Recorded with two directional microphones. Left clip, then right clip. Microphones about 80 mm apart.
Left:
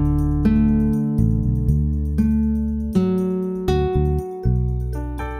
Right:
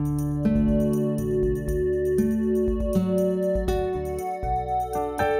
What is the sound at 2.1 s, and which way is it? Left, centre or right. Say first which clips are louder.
Music: even; centre.